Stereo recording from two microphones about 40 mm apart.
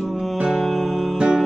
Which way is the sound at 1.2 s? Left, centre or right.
Centre.